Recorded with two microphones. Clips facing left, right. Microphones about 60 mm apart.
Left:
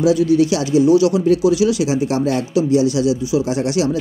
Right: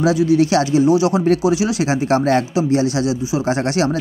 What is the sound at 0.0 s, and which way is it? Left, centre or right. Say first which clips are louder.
Speech: left 1 dB; right.